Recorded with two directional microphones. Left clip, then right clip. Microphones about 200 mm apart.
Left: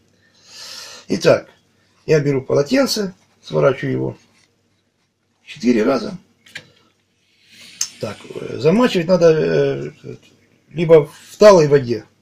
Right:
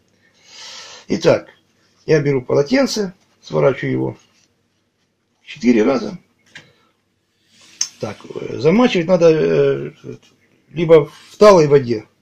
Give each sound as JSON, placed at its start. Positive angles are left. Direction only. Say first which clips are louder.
{"t": 0.5, "sound": "a sound", "louder": "even", "side_deg": -20}
{"t": 2.0, "sound": "speech", "louder": "right 1 dB", "side_deg": -20}
{"t": 5.4, "sound": "speech", "louder": "right 2 dB", "side_deg": -20}
{"t": 7.8, "sound": "speech", "louder": "right 1 dB", "side_deg": -20}